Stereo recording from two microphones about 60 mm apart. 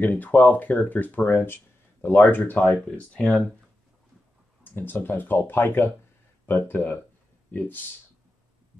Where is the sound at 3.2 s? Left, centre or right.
Centre.